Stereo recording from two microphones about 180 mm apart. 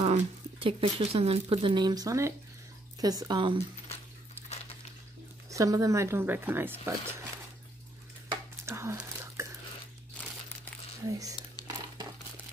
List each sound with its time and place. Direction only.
0.0 s speech: 30° right (ahead or behind)
5.5 s speech: 20° right (ahead or behind)
8.6 s whispering: 15° right (ahead or behind)
10.2 s crumpling: 10° left (ahead or behind)
11.1 s speech: 20° right (ahead or behind)
11.6 s crumpling: 20° left (ahead or behind)